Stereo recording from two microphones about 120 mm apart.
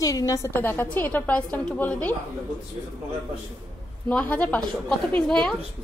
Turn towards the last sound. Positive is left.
turn(degrees=5)  # may be behind; listen again after turning